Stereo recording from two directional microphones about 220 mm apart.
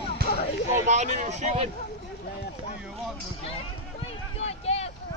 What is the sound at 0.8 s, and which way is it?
Speech, 30° right (ahead or behind).